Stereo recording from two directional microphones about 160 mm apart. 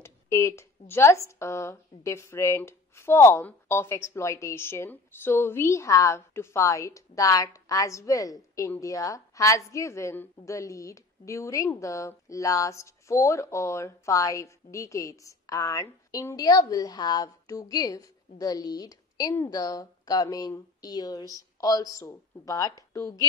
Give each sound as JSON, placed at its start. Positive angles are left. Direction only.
{"t": 0.0, "sound": "a woman's voice", "side_deg": 20}